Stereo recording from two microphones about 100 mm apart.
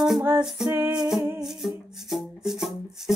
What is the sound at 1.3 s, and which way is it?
Music, 5° right (ahead or behind).